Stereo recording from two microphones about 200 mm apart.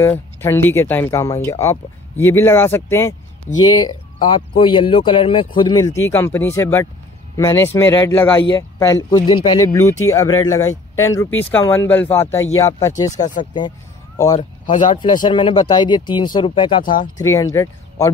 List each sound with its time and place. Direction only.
0.0 s speech: 10° left (ahead or behind)
14.3 s speech: 40° left (ahead or behind)
15.2 s speech: 25° left (ahead or behind)